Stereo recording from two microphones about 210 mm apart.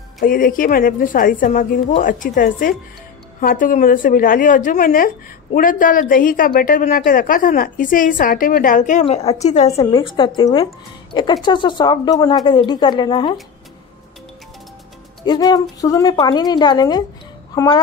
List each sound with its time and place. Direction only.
0.2 s a woman's voice: 40° left (ahead or behind); by 13.4 s 20° left (ahead or behind)
15.2 s a woman's voice: 20° left (ahead or behind)